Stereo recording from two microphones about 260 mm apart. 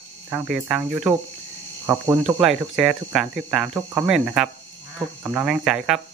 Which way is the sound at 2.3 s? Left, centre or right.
Centre.